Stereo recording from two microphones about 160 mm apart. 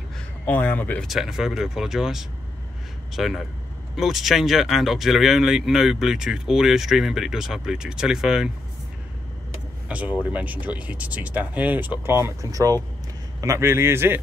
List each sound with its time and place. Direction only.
0.5 s speech: 10° left (ahead or behind)
1.0 s speech: centre (ahead or behind)
9.8 s speech: 10° right (ahead or behind)